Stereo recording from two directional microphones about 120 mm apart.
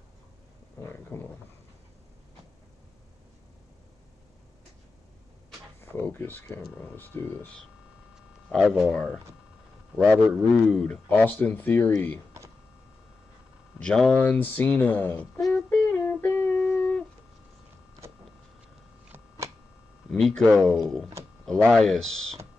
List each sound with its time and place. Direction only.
1.1 s a sound: 20° left (ahead or behind)
5.8 s speech: 15° left (ahead or behind)
8.5 s a man's voice: centre (ahead or behind)
10.7 s speech: centre (ahead or behind)
11.1 s speech: 15° left (ahead or behind)
13.7 s speech: 5° left (ahead or behind)
15.5 s humming: 15° left (ahead or behind)
20.1 s speech: centre (ahead or behind)